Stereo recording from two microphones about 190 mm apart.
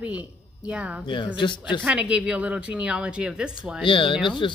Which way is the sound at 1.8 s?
5° right (ahead or behind).